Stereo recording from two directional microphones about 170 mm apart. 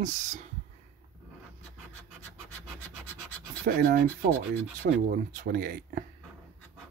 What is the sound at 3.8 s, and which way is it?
Speech, 55° right (ahead or behind).